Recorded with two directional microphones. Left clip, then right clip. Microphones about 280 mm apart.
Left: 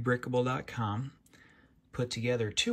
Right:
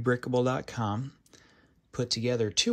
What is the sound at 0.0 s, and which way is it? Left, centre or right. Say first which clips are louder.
Speech: right 3 dB; centre.